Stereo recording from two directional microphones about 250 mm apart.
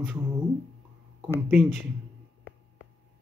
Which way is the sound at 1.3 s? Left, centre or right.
Centre.